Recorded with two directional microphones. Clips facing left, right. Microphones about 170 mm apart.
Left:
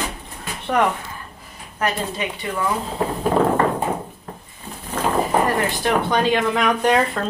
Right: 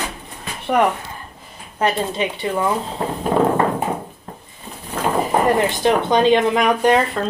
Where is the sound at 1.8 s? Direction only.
25° right (ahead or behind).